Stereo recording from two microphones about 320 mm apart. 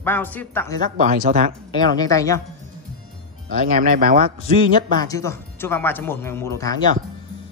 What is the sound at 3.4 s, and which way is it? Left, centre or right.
Speech, right.